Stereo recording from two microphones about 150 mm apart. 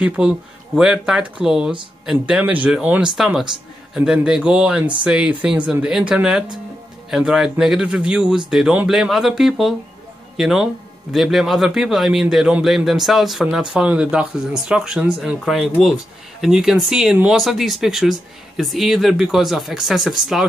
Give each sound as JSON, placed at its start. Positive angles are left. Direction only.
{"t": 0.0, "sound": "a man's voice", "side_deg": -5}